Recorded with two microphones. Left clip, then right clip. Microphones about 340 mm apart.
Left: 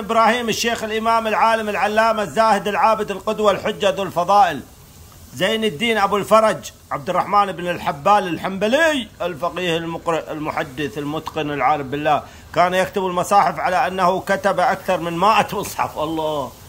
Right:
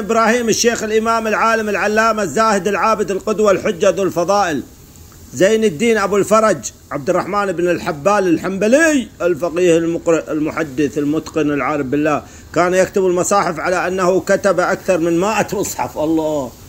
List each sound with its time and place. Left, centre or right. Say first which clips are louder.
0.1 s a man's voice: right 2 dB; centre
5.7 s a man's voice: right 3 dB; centre
16.0 s speech: right 8 dB; left